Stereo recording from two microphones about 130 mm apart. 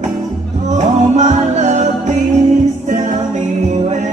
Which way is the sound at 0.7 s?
60° right (ahead or behind).